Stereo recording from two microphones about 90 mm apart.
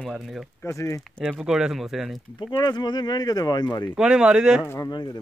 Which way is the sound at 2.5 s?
50° left (ahead or behind).